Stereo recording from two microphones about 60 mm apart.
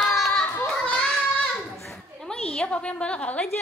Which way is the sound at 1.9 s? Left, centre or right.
Centre.